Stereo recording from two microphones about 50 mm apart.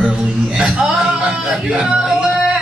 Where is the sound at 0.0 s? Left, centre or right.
Centre.